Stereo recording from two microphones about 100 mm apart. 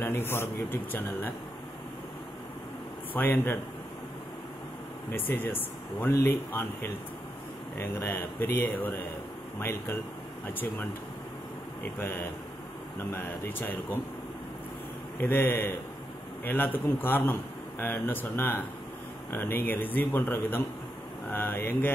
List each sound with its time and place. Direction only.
0.0 s a man's voice: 25° left (ahead or behind)
3.1 s a man's voice: 20° left (ahead or behind)
5.1 s a man's voice: 20° left (ahead or behind)
15.1 s a man's voice: 20° left (ahead or behind)